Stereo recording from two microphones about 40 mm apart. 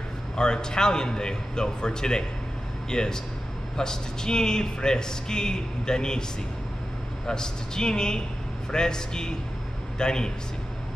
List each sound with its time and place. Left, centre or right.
0.4 s speech: centre
7.2 s speech: centre